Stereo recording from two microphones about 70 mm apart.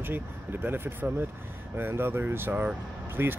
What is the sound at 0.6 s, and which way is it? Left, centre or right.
Speech, right.